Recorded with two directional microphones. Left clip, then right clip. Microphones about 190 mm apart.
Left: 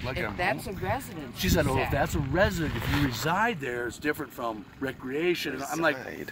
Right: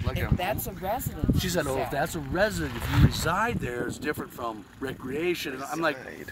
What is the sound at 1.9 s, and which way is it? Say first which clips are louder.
Speech: left 1 dB; 10° left (ahead or behind).